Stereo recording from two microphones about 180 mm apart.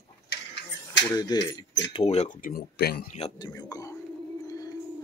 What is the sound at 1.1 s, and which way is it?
Speech, 20° left (ahead or behind).